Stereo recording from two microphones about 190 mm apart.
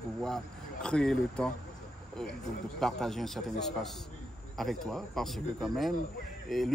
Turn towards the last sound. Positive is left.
turn(degrees=0)  # may be behind; listen again after turning